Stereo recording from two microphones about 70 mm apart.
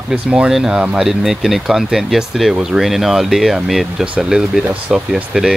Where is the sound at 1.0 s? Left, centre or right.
Centre.